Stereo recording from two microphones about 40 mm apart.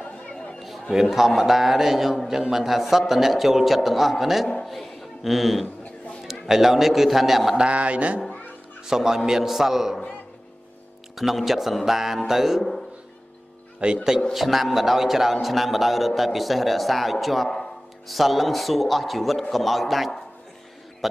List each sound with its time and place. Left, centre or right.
0.0 s chatter: left
0.6 s a man's voice: centre
7.7 s speech: right
8.8 s a man's voice: centre
11.1 s a man's voice: centre
13.8 s speech: right
14.3 s a man's voice: centre